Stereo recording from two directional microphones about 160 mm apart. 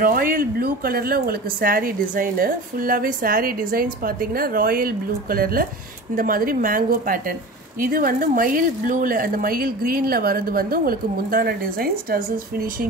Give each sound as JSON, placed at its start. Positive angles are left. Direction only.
{"t": 0.0, "sound": "speech", "side_deg": -65}